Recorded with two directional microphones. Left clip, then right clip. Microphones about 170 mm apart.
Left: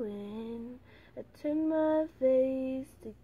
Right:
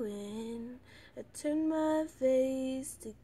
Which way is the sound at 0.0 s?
10° right (ahead or behind).